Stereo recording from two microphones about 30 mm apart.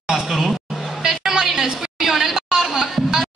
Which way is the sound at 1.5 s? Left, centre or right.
Centre.